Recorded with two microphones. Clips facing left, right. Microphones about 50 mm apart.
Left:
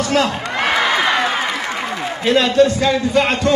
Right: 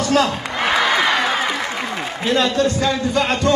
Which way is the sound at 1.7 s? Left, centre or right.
Left.